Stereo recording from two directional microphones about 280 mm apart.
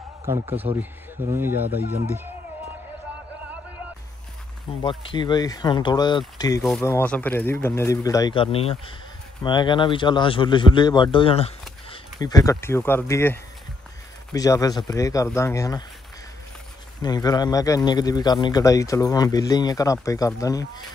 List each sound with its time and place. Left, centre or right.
0.7 s speech: right
1.2 s speech: centre
4.6 s speech: centre
17.0 s speech: centre